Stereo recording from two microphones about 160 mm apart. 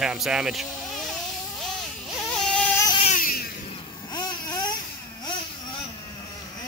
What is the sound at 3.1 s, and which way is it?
Vehicle, 60° left (ahead or behind).